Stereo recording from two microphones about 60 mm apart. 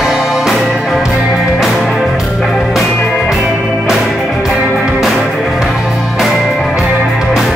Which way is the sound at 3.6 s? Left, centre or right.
Centre.